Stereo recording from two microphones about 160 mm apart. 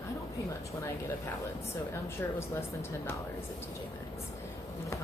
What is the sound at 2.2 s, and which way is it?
Speech, 15° left (ahead or behind).